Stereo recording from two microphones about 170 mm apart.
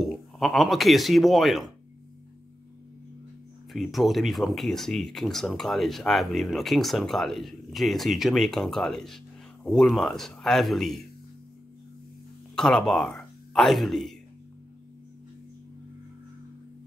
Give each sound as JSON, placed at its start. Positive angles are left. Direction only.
{"t": 0.0, "sound": "speech", "side_deg": 0}
{"t": 3.7, "sound": "speech", "side_deg": 0}
{"t": 12.5, "sound": "speech", "side_deg": 5}